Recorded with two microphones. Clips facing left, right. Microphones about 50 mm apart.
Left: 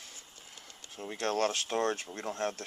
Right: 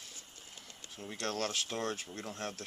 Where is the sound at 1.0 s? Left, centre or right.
Centre.